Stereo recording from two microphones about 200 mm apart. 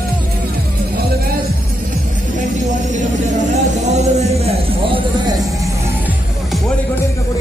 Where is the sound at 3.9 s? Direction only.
35° right (ahead or behind).